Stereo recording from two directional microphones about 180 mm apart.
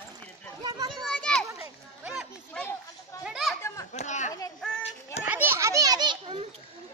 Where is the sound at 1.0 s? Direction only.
5° left (ahead or behind).